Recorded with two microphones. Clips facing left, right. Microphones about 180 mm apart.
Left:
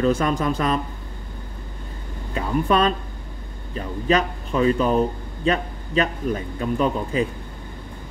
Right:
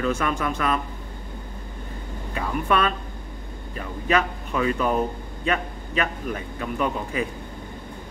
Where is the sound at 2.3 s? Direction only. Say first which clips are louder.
Left 3 dB; 35° left (ahead or behind).